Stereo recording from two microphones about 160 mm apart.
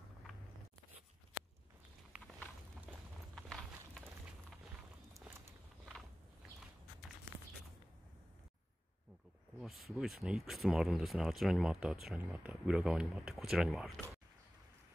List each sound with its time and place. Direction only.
2.9 s clip-clop: centre (ahead or behind)
9.6 s speech: centre (ahead or behind)